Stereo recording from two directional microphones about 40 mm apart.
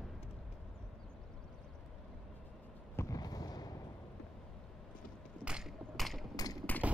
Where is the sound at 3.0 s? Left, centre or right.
Left.